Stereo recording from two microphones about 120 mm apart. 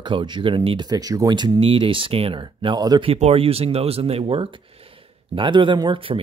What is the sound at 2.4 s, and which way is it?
Speech, 40° right (ahead or behind).